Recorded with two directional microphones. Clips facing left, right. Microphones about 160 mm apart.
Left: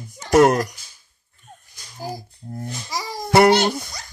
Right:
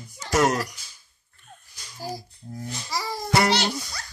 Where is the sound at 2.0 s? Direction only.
50° left (ahead or behind).